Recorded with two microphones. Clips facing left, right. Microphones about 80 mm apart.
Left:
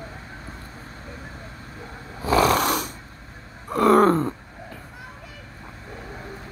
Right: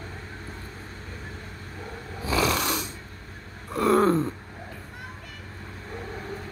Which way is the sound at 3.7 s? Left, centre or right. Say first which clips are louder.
Left 4 dB; left.